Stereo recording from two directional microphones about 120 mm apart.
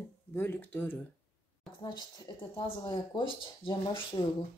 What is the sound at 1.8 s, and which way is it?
Speech, 40° left (ahead or behind).